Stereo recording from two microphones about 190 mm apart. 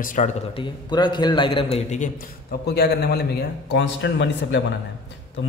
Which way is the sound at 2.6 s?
60° left (ahead or behind).